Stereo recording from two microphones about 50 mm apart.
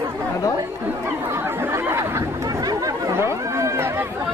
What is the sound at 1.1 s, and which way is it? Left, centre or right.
Chatter, right.